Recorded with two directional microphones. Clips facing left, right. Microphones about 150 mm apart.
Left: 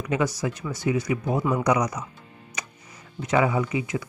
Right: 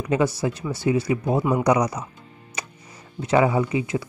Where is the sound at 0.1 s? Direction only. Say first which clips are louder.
Right 4 dB; 30° right (ahead or behind).